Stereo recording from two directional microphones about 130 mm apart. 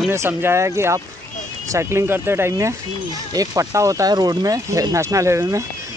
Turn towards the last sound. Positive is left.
turn(degrees=-25)  # may be behind; listen again after turning